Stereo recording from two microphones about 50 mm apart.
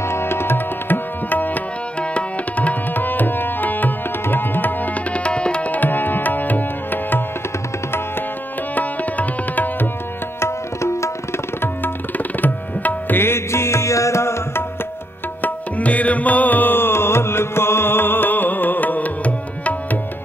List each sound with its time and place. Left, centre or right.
0.0 s tabla: left
2.0 s tabla: left
5.1 s tabla: left
5.7 s tabla: left
8.7 s tabla: left
10.4 s tabla: left
12.2 s tabla: left
13.2 s music: left
15.4 s music: left